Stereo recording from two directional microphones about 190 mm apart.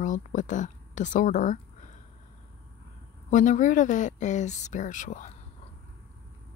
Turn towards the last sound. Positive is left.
turn(degrees=40)  # may be behind; listen again after turning